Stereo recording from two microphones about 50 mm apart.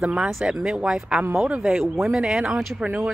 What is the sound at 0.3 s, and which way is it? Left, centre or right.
Speech, centre.